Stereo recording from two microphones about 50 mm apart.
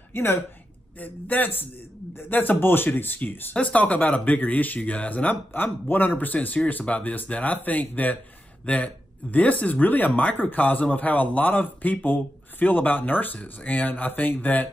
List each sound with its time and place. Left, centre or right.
0.1 s a woman's voice: left
0.9 s speech: left
3.5 s speech: left